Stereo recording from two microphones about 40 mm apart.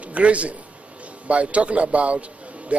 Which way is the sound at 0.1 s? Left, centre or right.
Right.